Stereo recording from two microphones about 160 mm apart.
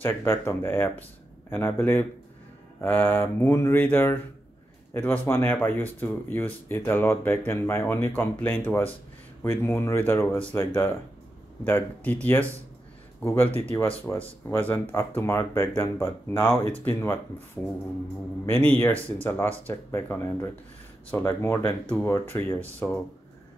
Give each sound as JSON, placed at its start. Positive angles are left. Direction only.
{"t": 0.0, "sound": "speech", "side_deg": 15}
{"t": 13.5, "sound": "speech", "side_deg": -40}
{"t": 14.1, "sound": "speech", "side_deg": 20}
{"t": 18.4, "sound": "speech", "side_deg": 15}